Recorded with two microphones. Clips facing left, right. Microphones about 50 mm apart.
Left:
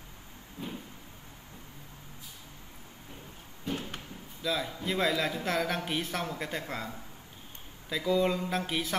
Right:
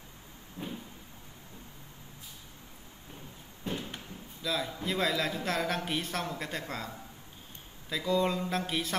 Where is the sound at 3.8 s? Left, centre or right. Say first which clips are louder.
Left 1 dB; left.